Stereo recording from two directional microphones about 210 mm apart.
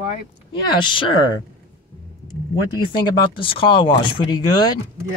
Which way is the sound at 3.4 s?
25° left (ahead or behind).